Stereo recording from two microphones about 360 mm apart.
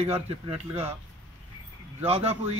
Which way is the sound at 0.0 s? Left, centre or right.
Centre.